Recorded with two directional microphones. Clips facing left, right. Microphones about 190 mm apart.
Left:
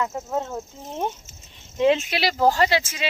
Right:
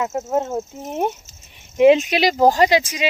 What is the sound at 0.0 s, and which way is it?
Speech, 20° right (ahead or behind).